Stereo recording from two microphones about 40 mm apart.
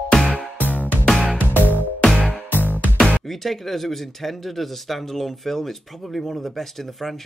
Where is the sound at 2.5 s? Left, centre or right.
Left.